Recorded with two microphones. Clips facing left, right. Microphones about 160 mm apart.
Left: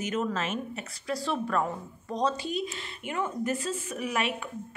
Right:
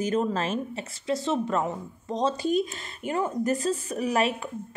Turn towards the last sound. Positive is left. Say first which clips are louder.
# right 5 dB
turn(degrees=-35)  # may be behind; listen again after turning